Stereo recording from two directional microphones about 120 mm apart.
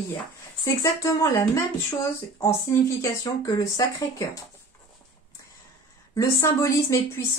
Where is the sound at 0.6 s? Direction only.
25° left (ahead or behind).